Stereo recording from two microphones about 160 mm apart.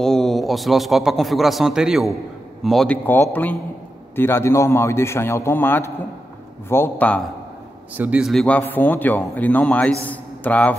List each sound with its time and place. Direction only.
0.0 s a man's voice: 5° left (ahead or behind)
8.0 s a man's voice: 10° right (ahead or behind)
8.3 s a man's voice: 5° left (ahead or behind)